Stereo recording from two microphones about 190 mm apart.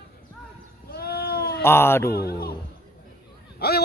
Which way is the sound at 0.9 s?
55° left (ahead or behind).